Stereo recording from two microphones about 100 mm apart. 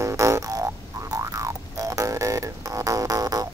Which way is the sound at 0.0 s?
30° right (ahead or behind).